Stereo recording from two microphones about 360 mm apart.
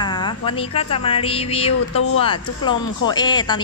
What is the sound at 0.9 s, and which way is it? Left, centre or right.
A woman's voice, centre.